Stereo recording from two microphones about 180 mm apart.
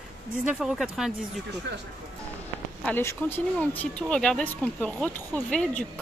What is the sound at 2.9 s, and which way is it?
A woman's voice, 10° left (ahead or behind).